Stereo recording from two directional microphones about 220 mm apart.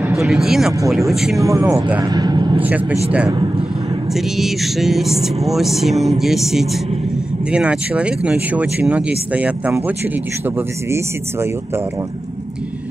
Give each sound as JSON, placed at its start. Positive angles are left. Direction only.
{"t": 0.2, "sound": "speech", "side_deg": 0}
{"t": 1.4, "sound": "speech", "side_deg": -15}
{"t": 2.0, "sound": "vehicle", "side_deg": -20}
{"t": 2.6, "sound": "speech", "side_deg": -5}